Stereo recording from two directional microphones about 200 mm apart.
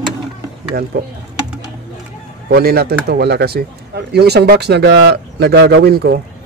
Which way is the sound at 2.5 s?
50° right (ahead or behind).